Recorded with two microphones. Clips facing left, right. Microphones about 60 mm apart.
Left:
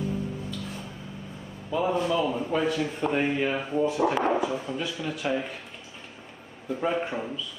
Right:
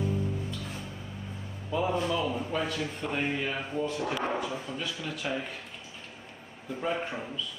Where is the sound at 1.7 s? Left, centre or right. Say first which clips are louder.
Left 3 dB; centre.